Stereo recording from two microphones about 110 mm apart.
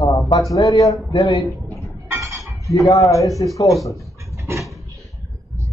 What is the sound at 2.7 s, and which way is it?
Speech, 30° left (ahead or behind).